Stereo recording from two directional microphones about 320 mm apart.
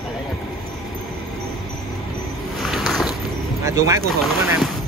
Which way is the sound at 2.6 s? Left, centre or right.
Centre.